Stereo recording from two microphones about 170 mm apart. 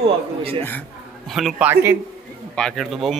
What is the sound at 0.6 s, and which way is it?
Speech, 10° left (ahead or behind).